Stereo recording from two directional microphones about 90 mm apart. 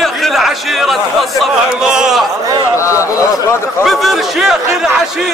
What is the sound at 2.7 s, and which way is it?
Speech, 35° left (ahead or behind).